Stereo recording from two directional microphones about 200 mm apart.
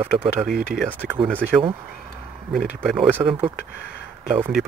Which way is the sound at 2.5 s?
5° right (ahead or behind).